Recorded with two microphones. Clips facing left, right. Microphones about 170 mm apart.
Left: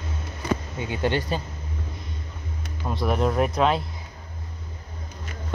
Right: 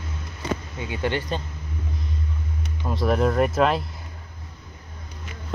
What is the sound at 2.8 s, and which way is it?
Speech, centre (ahead or behind).